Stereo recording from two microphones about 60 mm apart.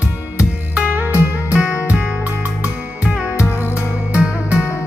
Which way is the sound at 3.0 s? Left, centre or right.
Centre.